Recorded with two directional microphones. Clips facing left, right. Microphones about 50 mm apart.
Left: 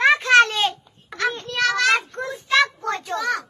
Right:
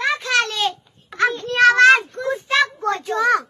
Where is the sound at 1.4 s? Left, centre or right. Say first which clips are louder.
Right 9 dB; right.